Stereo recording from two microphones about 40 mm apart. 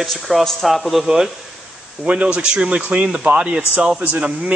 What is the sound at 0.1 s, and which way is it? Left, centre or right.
Speech, centre.